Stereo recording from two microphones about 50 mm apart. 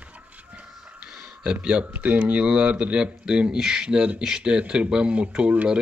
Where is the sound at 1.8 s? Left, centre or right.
Right.